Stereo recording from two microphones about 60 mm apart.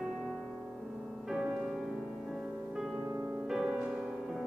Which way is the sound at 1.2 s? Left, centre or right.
Centre.